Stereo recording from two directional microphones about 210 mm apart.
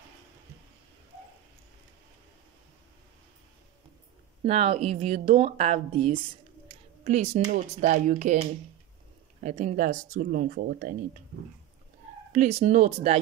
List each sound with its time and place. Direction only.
4.5 s a woman's voice: 30° right (ahead or behind)
12.3 s speech: 35° right (ahead or behind)